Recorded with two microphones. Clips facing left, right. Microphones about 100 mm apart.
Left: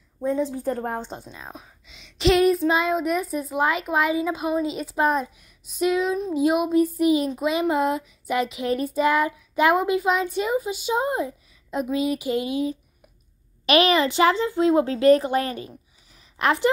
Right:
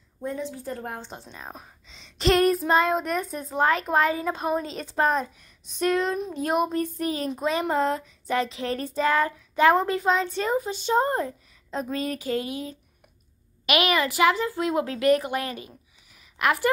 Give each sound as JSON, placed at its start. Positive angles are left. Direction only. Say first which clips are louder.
{"t": 0.4, "sound": "a woman's voice", "louder": "left 7 dB", "side_deg": 45}
{"t": 1.4, "sound": "speech", "louder": "even", "side_deg": -5}
{"t": 1.9, "sound": "child singing", "louder": "left 2 dB", "side_deg": 5}
{"t": 5.7, "sound": "speech", "louder": "left 2 dB", "side_deg": 5}
{"t": 7.4, "sound": "child singing", "louder": "even", "side_deg": 10}
{"t": 13.7, "sound": "a woman's voice", "louder": "left 4 dB", "side_deg": 30}